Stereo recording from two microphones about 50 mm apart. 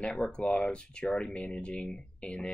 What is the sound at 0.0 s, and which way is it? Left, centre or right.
Speech, centre.